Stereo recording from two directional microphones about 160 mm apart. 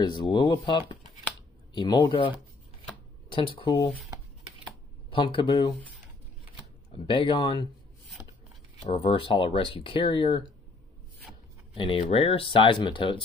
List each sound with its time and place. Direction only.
0.0 s speech: 25° left (ahead or behind)
5.1 s speech: 30° left (ahead or behind)
6.9 s speech: 30° left (ahead or behind)
8.8 s speech: 35° left (ahead or behind)
11.7 s speech: 35° left (ahead or behind)